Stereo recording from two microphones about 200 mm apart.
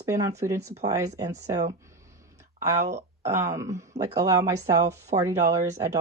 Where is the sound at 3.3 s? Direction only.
35° right (ahead or behind).